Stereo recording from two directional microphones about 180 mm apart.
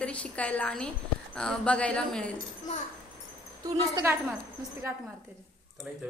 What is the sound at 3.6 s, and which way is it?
Speech, 15° right (ahead or behind).